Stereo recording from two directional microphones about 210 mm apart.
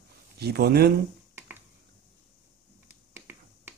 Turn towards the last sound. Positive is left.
turn(degrees=-10)  # may be behind; listen again after turning